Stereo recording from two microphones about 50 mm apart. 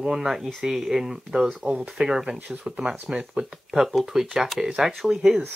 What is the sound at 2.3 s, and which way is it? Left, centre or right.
Speech, right.